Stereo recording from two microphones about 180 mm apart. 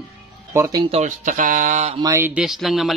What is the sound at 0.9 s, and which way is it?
Speech, 40° right (ahead or behind).